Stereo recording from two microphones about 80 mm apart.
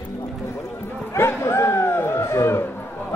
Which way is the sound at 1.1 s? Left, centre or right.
Left.